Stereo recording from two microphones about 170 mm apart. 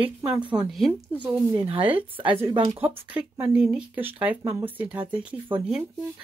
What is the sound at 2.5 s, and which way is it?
Speech, 30° right (ahead or behind).